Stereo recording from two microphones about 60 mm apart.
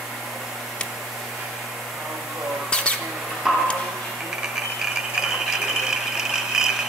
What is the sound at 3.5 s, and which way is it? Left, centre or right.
Tick-tock, centre.